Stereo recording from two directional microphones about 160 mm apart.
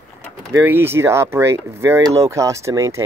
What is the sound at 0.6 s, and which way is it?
Speech, 15° right (ahead or behind).